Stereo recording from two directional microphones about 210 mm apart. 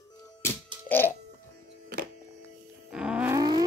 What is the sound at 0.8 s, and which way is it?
Music, 10° left (ahead or behind).